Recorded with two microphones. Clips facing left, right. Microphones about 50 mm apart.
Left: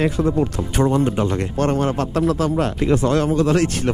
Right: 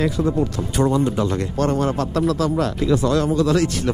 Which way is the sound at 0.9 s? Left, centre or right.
Left.